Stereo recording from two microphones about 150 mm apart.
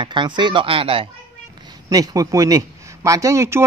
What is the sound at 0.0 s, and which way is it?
Speech, 30° right (ahead or behind).